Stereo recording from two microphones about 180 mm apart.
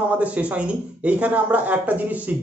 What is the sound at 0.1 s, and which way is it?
Speech, 5° right (ahead or behind).